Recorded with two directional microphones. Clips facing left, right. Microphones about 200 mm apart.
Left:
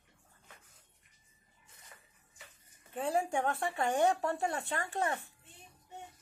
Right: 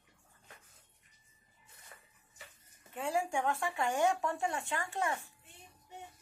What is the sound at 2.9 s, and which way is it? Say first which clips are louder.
Speech: left 2 dB; 35° left (ahead or behind).